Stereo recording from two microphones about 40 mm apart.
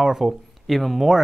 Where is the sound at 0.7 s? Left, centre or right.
Centre.